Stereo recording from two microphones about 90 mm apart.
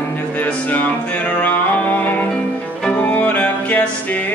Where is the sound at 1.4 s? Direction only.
20° left (ahead or behind).